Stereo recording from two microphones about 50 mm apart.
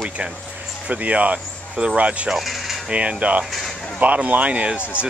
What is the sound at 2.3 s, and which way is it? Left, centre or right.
Speech, centre.